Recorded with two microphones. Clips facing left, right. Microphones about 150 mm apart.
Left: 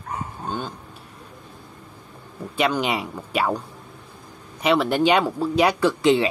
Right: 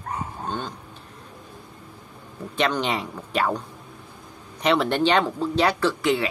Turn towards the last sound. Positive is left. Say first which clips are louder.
# left 4 dB
turn(degrees=25)  # may be behind; listen again after turning